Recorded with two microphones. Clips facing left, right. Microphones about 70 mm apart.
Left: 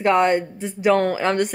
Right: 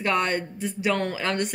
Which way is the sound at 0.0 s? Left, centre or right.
Left.